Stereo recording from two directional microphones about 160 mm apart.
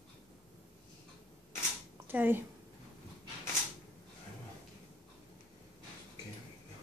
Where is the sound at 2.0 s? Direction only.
15° right (ahead or behind).